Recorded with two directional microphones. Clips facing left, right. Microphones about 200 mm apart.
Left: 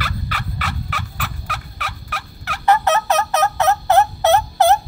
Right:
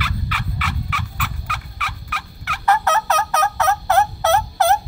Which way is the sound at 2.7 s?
20° left (ahead or behind).